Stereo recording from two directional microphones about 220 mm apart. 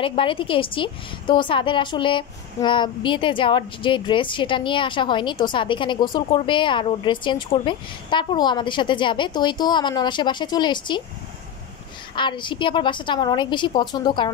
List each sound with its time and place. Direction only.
0.0 s a woman's voice: 25° left (ahead or behind)
12.2 s a woman's voice: 20° left (ahead or behind)